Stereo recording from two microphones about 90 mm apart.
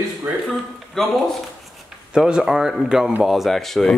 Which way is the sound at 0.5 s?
Centre (ahead or behind).